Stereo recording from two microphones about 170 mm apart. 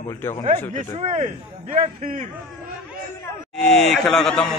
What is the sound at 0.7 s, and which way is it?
A man's voice, 45° right (ahead or behind).